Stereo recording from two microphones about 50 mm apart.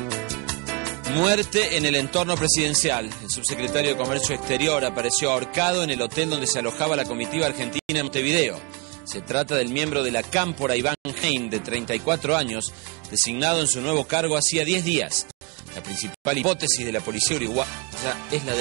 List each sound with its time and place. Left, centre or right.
0.1 s music: centre